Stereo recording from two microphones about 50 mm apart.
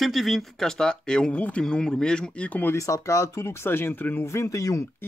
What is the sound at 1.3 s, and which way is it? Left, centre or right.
Speech, left.